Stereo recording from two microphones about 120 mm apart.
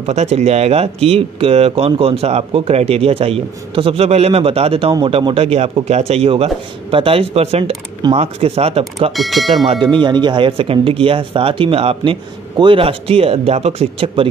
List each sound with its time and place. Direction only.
0.0 s speech: 65° right (ahead or behind)
9.1 s speech: centre (ahead or behind)
9.7 s speech: 40° right (ahead or behind)